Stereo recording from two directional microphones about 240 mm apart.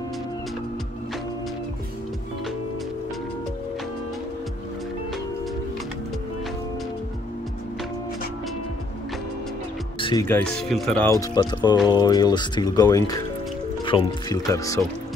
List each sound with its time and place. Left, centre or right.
9.9 s music: left
10.2 s speech: centre
11.1 s speech: centre